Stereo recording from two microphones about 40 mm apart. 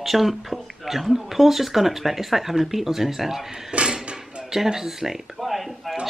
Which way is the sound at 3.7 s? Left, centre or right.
Right.